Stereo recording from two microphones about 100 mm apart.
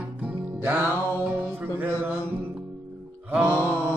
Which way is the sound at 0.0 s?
10° right (ahead or behind).